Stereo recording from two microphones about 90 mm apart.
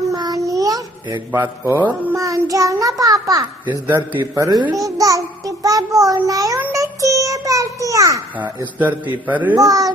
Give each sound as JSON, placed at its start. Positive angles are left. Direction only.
{"t": 0.1, "sound": "a sound", "side_deg": -45}
{"t": 1.3, "sound": "a man's voice", "side_deg": -30}
{"t": 2.1, "sound": "a child's voice", "side_deg": -35}
{"t": 3.8, "sound": "a man's voice", "side_deg": -20}
{"t": 4.4, "sound": "a child's voice", "side_deg": -45}
{"t": 6.7, "sound": "child singing", "side_deg": -35}
{"t": 8.4, "sound": "a man's voice", "side_deg": -20}
{"t": 9.6, "sound": "speech", "side_deg": -40}